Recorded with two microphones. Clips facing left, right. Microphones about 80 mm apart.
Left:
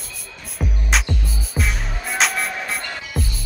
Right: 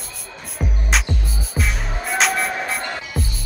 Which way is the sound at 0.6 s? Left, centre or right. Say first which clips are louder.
Even; centre.